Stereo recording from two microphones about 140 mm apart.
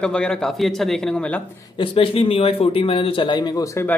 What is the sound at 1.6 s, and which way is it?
A man's voice, 35° left (ahead or behind).